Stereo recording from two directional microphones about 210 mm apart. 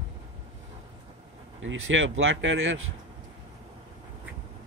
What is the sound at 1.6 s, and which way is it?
Speech, 65° right (ahead or behind).